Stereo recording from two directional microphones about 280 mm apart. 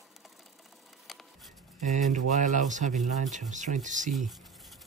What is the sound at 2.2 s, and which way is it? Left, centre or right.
Speech, right.